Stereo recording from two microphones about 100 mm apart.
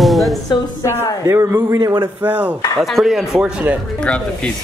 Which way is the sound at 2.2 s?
15° right (ahead or behind).